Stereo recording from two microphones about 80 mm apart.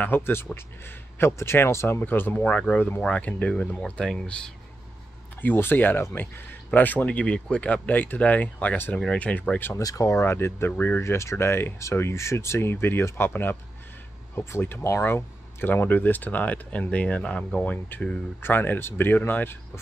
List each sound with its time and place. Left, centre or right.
0.0 s speech: left; by 4.4 s centre
5.4 s speech: left
9.8 s speech: left; by 17.7 s centre
18.4 s speech: left